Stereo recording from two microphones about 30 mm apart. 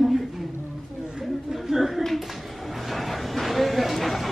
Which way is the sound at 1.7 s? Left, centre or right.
Centre.